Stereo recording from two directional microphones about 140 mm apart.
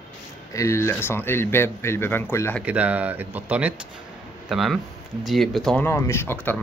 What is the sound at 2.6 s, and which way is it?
Speech, 10° right (ahead or behind).